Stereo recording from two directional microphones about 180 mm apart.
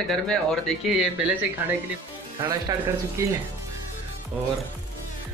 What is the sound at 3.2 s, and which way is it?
Speech, 15° right (ahead or behind).